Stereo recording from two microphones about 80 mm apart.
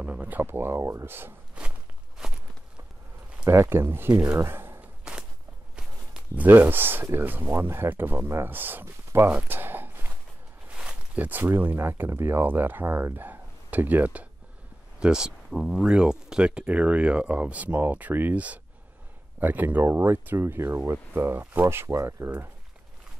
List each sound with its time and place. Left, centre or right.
0.0 s speech: centre; by 1.0 s right
1.0 s speech: right
1.6 s walk: centre
3.4 s speech: right
4.4 s a sound: right
5.1 s walk: centre
6.3 s speech: right
9.3 s a sound: right
10.7 s speech: centre
15.0 s speech: centre; by 22.5 s right